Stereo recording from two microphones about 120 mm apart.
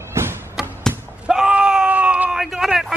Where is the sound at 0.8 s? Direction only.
5° right (ahead or behind).